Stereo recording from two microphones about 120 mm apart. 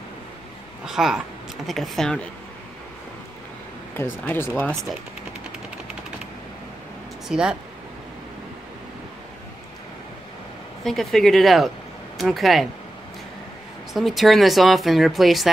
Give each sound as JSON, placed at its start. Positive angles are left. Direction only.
{"t": 0.8, "sound": "speech", "side_deg": -5}
{"t": 3.9, "sound": "speech", "side_deg": 20}
{"t": 7.2, "sound": "speech", "side_deg": -5}
{"t": 10.8, "sound": "speech", "side_deg": 0}
{"t": 13.9, "sound": "speech", "side_deg": 0}